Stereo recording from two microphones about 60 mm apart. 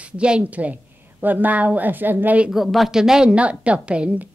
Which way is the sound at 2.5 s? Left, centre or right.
Centre.